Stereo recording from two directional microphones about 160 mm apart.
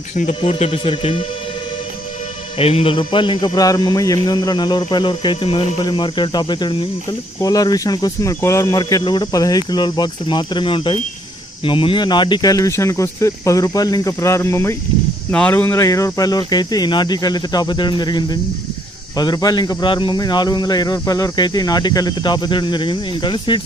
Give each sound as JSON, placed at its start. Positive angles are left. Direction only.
{"t": 0.2, "sound": "speech", "side_deg": 40}
{"t": 2.6, "sound": "a man's voice", "side_deg": 35}